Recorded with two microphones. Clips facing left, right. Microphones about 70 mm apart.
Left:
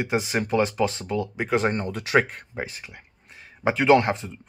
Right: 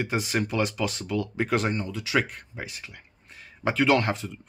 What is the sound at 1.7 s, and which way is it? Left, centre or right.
Speech, left.